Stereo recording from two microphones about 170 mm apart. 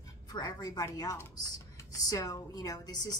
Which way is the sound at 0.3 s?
20° left (ahead or behind).